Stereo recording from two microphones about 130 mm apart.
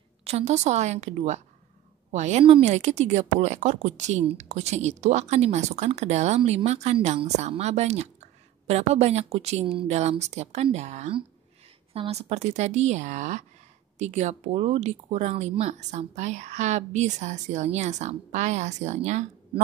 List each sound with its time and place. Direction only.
0.2 s a woman's voice: 50° right (ahead or behind)
11.9 s speech: 50° right (ahead or behind)